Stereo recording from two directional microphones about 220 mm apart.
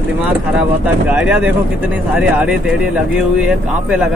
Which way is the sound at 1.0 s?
5° right (ahead or behind).